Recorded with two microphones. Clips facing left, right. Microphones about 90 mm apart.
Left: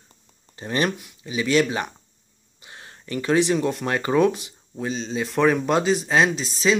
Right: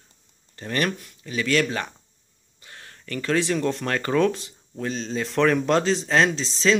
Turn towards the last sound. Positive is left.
turn(degrees=10)  # may be behind; listen again after turning